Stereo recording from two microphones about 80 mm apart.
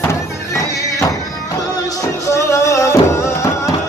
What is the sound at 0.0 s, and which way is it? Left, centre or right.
Music, left.